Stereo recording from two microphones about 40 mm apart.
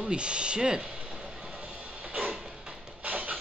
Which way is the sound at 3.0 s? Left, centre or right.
Right.